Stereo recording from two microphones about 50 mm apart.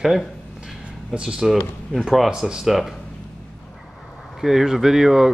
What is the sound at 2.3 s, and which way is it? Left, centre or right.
Speech, centre.